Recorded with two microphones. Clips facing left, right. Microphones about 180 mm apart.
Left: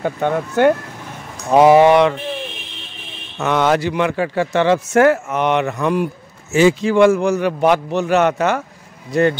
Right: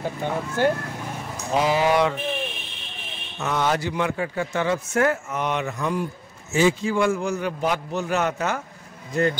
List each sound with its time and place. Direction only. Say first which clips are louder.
0.0 s a man's voice: left 7 dB; 65° left (ahead or behind)
3.3 s a man's voice: left 7 dB; 90° left